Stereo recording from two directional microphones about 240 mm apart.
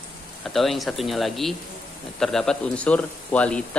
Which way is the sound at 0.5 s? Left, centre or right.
Centre.